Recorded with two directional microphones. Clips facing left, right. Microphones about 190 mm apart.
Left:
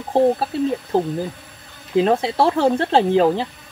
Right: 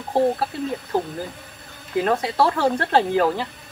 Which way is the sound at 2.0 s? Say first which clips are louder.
Left 3 dB; 25° left (ahead or behind).